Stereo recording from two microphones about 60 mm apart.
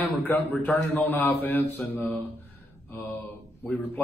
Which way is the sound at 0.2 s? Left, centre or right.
Left.